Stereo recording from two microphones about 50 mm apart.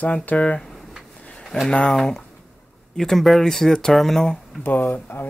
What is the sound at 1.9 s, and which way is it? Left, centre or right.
Speech, centre.